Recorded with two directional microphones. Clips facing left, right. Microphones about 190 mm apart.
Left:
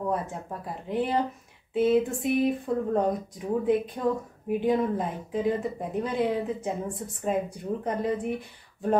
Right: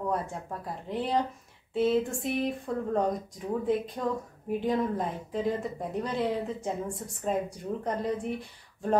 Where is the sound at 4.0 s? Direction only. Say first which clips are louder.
Left 4 dB; 5° left (ahead or behind).